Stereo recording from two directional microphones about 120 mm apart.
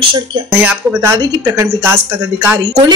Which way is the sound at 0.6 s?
20° right (ahead or behind).